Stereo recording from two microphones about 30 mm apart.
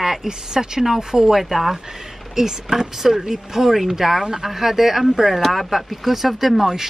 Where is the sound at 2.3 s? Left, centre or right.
Centre.